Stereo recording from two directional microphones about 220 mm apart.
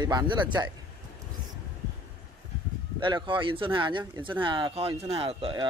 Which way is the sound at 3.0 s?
20° right (ahead or behind).